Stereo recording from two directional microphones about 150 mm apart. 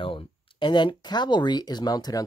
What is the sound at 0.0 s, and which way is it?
Speech, 35° left (ahead or behind).